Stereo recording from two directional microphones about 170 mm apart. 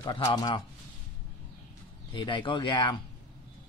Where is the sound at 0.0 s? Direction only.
25° left (ahead or behind).